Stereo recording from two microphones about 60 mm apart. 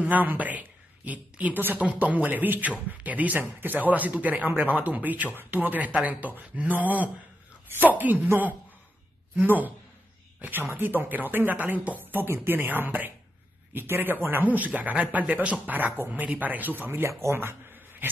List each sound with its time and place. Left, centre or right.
0.0 s a woman's voice: right
9.4 s speech: right
10.7 s speech: right
17.2 s speech: right
18.0 s speech: right